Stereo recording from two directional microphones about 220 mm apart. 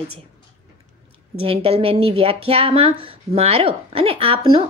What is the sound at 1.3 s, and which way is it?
Speech, 25° right (ahead or behind).